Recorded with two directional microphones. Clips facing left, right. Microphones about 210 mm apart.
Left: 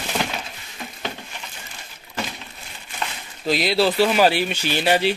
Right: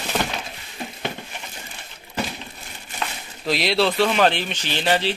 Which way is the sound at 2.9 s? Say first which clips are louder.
Even; centre (ahead or behind).